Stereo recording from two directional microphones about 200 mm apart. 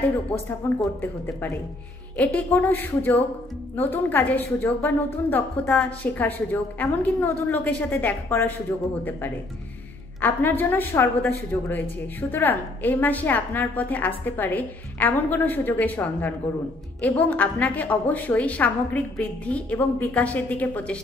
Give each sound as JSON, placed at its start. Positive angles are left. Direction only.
{"t": 0.6, "sound": "a woman's voice", "side_deg": 10}
{"t": 10.2, "sound": "a woman's voice", "side_deg": 10}